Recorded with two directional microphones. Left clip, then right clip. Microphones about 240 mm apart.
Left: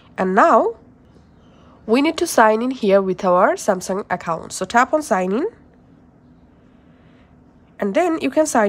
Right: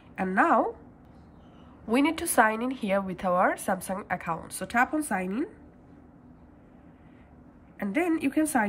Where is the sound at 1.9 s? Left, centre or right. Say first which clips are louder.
Left 9 dB; centre.